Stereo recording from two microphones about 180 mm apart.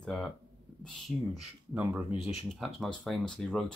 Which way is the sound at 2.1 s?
35° left (ahead or behind).